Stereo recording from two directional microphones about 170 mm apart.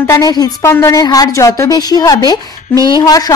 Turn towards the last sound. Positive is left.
turn(degrees=20)  # may be behind; listen again after turning